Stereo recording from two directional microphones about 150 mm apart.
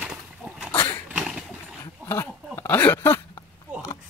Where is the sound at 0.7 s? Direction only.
15° left (ahead or behind).